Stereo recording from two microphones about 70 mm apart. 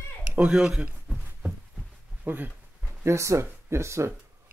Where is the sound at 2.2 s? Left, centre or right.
Right.